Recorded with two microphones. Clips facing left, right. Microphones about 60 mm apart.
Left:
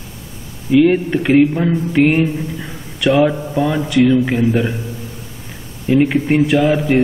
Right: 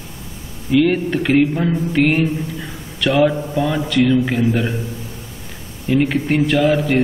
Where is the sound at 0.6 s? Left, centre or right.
Centre.